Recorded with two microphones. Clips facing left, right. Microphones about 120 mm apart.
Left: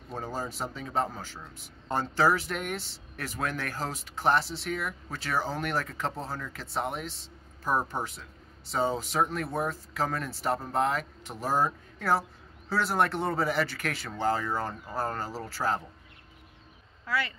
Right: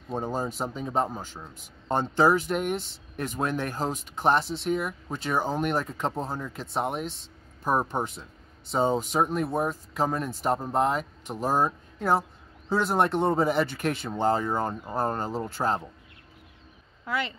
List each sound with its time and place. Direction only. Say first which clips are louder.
0.1 s speech: right 5 dB; 20° right (ahead or behind)
17.0 s speech: right 1 dB; 20° right (ahead or behind)